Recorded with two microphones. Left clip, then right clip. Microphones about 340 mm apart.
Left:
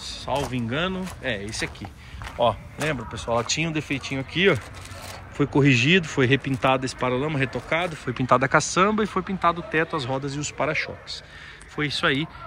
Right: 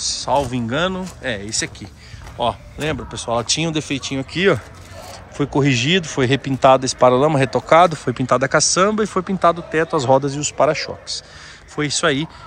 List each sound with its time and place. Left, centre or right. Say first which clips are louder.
0.2 s speech: right 6 dB; centre
7.7 s speech: right 15 dB; right
8.0 s speech: right 3 dB; centre